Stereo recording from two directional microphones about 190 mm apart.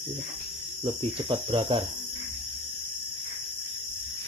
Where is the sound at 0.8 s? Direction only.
25° right (ahead or behind).